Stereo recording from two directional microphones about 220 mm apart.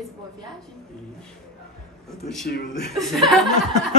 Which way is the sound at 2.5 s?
45° left (ahead or behind).